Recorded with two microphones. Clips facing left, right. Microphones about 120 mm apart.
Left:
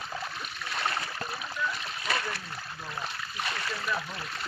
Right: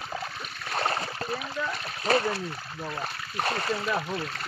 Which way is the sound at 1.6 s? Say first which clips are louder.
Right 3 dB; 35° right (ahead or behind).